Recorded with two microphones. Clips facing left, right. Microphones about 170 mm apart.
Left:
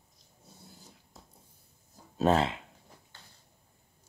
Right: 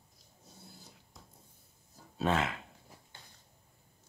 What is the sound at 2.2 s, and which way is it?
Speech, 35° left (ahead or behind).